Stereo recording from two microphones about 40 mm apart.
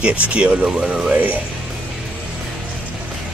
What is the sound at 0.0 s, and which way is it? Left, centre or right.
Speech, right.